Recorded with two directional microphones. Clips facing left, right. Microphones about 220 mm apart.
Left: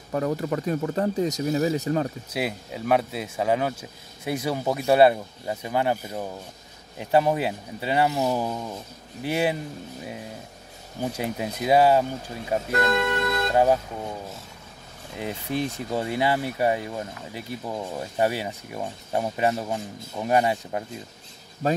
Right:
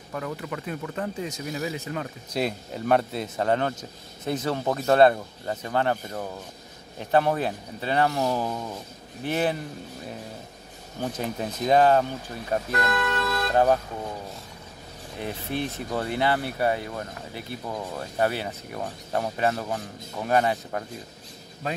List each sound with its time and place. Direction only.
0.1 s speech: 40° left (ahead or behind)
2.3 s speech: 5° left (ahead or behind)
11.0 s speech: 10° left (ahead or behind)
15.1 s speech: 15° left (ahead or behind)
21.6 s speech: 40° left (ahead or behind)